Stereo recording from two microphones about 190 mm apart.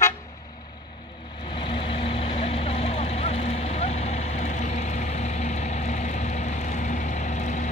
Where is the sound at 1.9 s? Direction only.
30° left (ahead or behind).